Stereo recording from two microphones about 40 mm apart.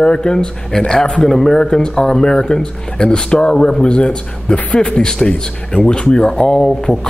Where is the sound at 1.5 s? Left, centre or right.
Left.